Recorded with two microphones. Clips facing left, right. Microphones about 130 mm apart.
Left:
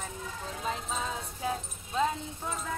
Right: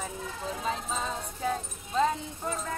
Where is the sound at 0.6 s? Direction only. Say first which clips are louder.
Right 1 dB; 5° left (ahead or behind).